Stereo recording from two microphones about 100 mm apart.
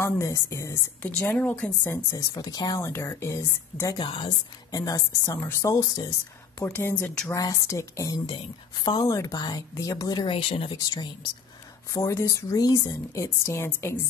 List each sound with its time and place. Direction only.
0.0 s a woman's voice: 30° left (ahead or behind)
1.0 s a woman's voice: 20° left (ahead or behind)
1.9 s a woman's voice: 30° left (ahead or behind)
2.8 s a woman's voice: 25° left (ahead or behind)
3.9 s speech: 55° left (ahead or behind)
4.6 s a woman's voice: 35° left (ahead or behind)
6.6 s a woman's voice: 25° left (ahead or behind)
7.3 s a woman's voice: 35° left (ahead or behind)
10.2 s speech: 70° left (ahead or behind)
11.9 s a woman's voice: 35° left (ahead or behind)